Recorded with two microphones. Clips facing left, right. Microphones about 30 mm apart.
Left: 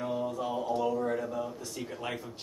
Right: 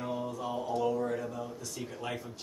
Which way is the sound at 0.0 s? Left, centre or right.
Centre.